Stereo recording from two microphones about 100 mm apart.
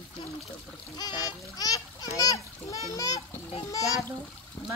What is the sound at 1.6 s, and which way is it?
Splash, 35° left (ahead or behind).